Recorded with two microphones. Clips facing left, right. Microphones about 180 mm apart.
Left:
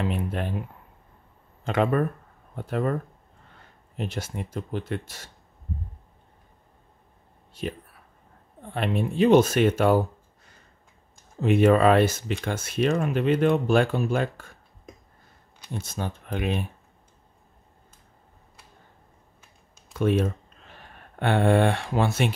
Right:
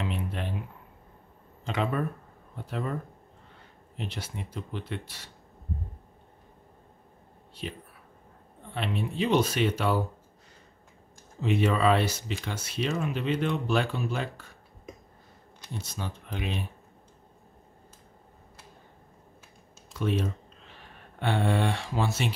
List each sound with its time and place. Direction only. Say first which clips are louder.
0.0 s speech: left 5 dB; 50° left (ahead or behind)
1.6 s speech: left 6 dB; 50° left (ahead or behind)
7.6 s speech: left 6 dB; 50° left (ahead or behind)
11.4 s speech: left 6 dB; 50° left (ahead or behind)
15.7 s speech: left 5 dB; 50° left (ahead or behind)
19.9 s a sound: left 6 dB; 55° left (ahead or behind)
21.2 s speech: left 6 dB; 60° left (ahead or behind)